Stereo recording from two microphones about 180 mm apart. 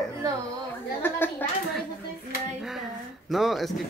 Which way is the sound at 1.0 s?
10° left (ahead or behind).